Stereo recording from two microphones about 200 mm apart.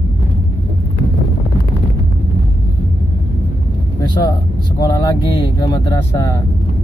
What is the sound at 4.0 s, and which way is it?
Speech, 20° left (ahead or behind).